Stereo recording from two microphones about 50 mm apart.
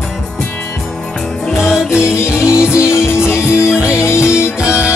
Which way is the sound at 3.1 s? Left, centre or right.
Left.